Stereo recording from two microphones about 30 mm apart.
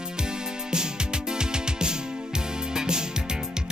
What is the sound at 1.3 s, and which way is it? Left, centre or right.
Music, right.